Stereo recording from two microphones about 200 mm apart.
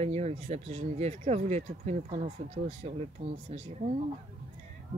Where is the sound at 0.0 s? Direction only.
30° right (ahead or behind).